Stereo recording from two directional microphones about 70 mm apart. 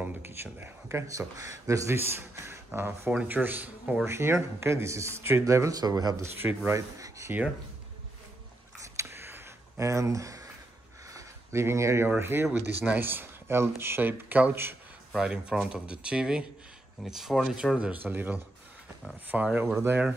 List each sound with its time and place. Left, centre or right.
0.0 s speech: right
2.0 s speech: right
4.0 s speech: right
6.4 s speech: right
7.0 s speech: right
8.8 s a sound: right
9.8 s speech: right
11.1 s a sound: right
11.6 s speech: right
12.5 s speech: right
15.1 s speech: centre
18.0 s speech: right